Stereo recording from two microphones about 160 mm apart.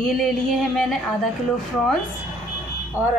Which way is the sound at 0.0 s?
Centre (ahead or behind).